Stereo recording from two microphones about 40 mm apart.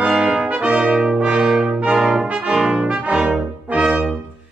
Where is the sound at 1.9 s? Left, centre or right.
Centre.